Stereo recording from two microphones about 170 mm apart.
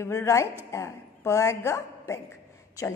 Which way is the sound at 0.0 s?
15° left (ahead or behind).